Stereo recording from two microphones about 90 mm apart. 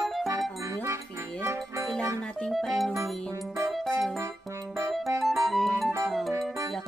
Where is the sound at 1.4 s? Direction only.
25° right (ahead or behind).